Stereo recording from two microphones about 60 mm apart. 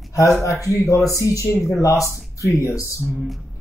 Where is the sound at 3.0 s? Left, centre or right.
Centre.